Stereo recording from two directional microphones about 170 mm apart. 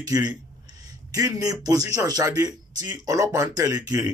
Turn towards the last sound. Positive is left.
turn(degrees=-20)  # may be behind; listen again after turning